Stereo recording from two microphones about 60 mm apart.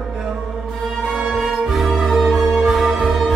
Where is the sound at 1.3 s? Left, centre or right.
Centre.